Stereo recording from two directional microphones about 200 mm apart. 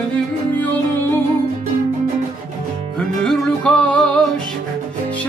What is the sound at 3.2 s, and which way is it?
Music, 5° left (ahead or behind).